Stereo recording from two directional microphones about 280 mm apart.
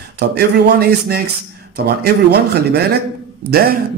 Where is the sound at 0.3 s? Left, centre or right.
Right.